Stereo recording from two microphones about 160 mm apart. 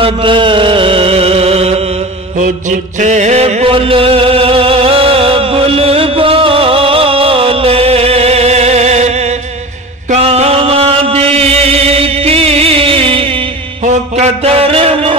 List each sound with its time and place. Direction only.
0.0 s music: 30° right (ahead or behind)
2.3 s chant: 50° right (ahead or behind); by 13.4 s 35° right (ahead or behind)
13.8 s a sound: 45° right (ahead or behind)